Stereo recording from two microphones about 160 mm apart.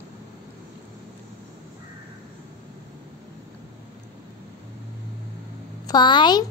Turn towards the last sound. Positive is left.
turn(degrees=25)  # may be behind; listen again after turning